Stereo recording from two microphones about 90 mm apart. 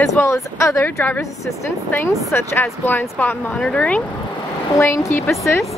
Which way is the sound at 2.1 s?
30° left (ahead or behind).